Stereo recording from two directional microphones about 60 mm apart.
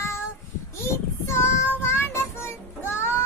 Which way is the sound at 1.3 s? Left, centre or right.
Left.